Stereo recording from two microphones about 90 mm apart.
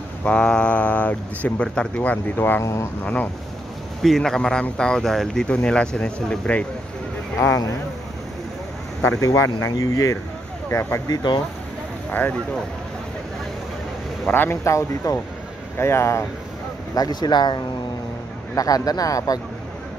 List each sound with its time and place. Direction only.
0.2 s speech: 10° left (ahead or behind)
2.6 s speech: 35° left (ahead or behind)
3.0 s speech: 15° left (ahead or behind)
4.0 s speech: 5° left (ahead or behind)
9.2 s speech: 40° left (ahead or behind)
11.1 s speech: 55° left (ahead or behind)
12.1 s speech: 20° left (ahead or behind)
14.2 s speech: 25° left (ahead or behind)
16.9 s speech: 45° left (ahead or behind)